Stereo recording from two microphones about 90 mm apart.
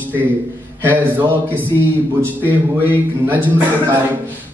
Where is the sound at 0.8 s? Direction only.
20° right (ahead or behind).